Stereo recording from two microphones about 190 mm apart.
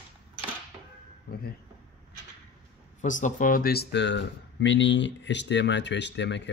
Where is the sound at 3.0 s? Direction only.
40° left (ahead or behind).